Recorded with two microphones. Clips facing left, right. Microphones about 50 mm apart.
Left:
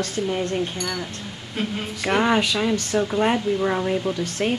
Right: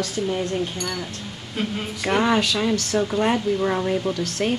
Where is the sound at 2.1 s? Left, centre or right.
Centre.